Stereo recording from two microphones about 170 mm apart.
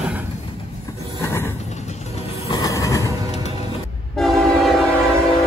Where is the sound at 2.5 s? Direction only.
20° left (ahead or behind).